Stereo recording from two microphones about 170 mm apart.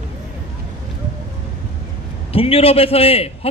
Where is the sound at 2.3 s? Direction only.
35° left (ahead or behind).